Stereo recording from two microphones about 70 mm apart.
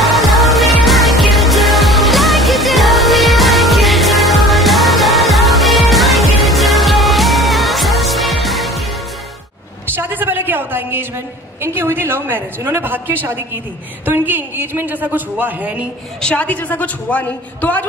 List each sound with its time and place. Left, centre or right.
0.0 s music: centre
9.9 s a sound: right
11.6 s a woman's voice: right
16.2 s a man's voice: centre